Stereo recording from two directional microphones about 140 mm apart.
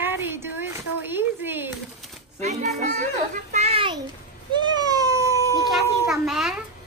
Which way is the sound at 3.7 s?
35° right (ahead or behind).